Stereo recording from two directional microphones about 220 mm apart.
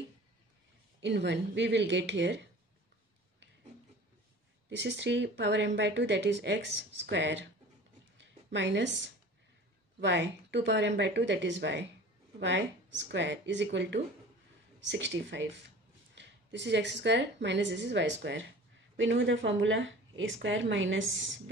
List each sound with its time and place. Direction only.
1.0 s speech: 50° right (ahead or behind)
4.6 s a woman's voice: 55° right (ahead or behind)